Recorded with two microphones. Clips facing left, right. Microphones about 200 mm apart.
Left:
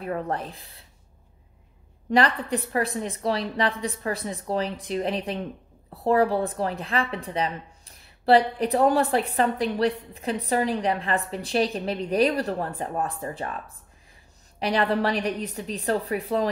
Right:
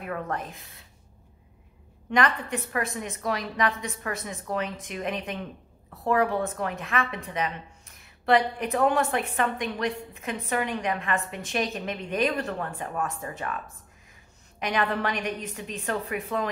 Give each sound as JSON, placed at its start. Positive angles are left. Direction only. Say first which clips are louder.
{"t": 0.0, "sound": "a woman's voice", "louder": "left 3 dB", "side_deg": 30}
{"t": 2.0, "sound": "a woman's voice", "louder": "left 3 dB", "side_deg": 35}
{"t": 14.6, "sound": "a woman's voice", "louder": "left 4 dB", "side_deg": 35}